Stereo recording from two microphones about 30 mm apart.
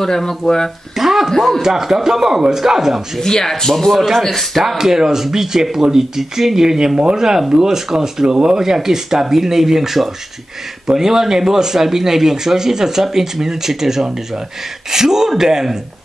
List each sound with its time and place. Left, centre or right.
0.0 s speech: centre
0.9 s a sound: centre
1.6 s speech: centre
3.2 s speech: centre
4.6 s speech: centre